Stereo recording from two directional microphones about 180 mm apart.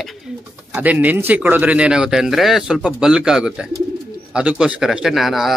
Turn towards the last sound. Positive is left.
turn(degrees=0)  # may be behind; listen again after turning